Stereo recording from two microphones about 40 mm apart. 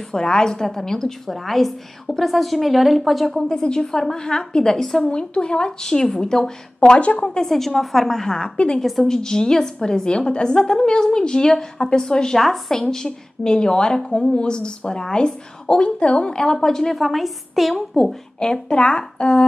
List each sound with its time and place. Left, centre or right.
0.1 s a woman's voice: centre
3.3 s a woman's voice: centre
5.0 s a woman's voice: left
7.4 s a woman's voice: centre; by 8.7 s left
8.7 s a woman's voice: centre
9.0 s a woman's voice: centre
15.8 s a woman's voice: left
16.9 s a woman's voice: centre
18.4 s a woman's voice: left